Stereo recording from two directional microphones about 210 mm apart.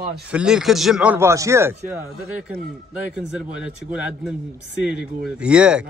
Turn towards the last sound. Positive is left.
turn(degrees=-5)  # may be behind; listen again after turning